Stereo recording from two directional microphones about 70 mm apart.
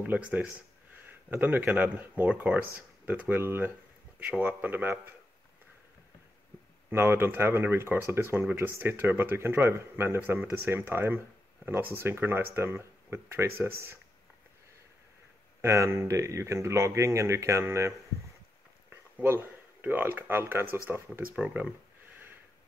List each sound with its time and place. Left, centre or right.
0.0 s speech: right
6.9 s speech: right
15.6 s speech: right
19.2 s speech: right
21.4 s speech: centre